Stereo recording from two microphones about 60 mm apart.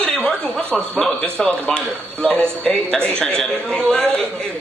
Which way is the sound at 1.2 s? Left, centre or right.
Centre.